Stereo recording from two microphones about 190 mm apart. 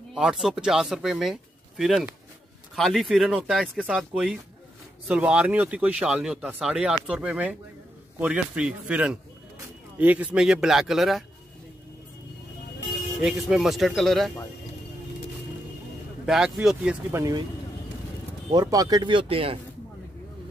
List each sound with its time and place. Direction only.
0.1 s speech: 5° right (ahead or behind)
13.2 s speech: centre (ahead or behind)
16.3 s speech: 5° right (ahead or behind)
18.5 s speech: 20° right (ahead or behind)